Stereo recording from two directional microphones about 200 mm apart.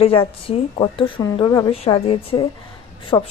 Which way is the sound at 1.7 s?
30° left (ahead or behind).